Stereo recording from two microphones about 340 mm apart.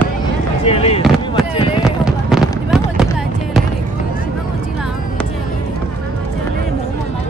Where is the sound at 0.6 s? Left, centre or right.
Centre.